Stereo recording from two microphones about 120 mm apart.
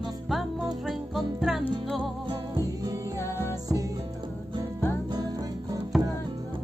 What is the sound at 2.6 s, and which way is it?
Music, 30° right (ahead or behind).